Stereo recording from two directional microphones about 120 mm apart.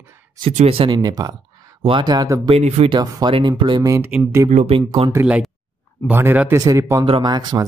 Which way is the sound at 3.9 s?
20° right (ahead or behind).